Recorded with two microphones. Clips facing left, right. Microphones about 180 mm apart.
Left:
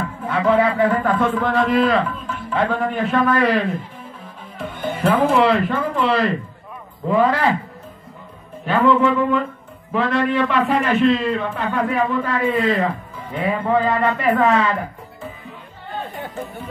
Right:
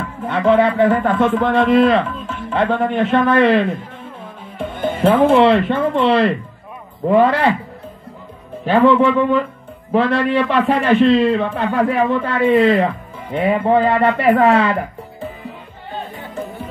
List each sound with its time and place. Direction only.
0.3 s a man's voice: 25° right (ahead or behind)
8.6 s a man's voice: 30° right (ahead or behind)